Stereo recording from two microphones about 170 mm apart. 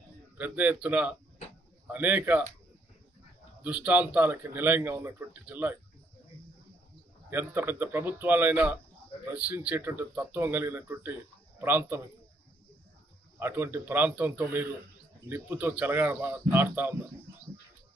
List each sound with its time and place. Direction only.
0.4 s speech: 10° right (ahead or behind)
3.6 s speech: 10° right (ahead or behind)
7.2 s speech: 10° right (ahead or behind)
13.4 s speech: 15° right (ahead or behind)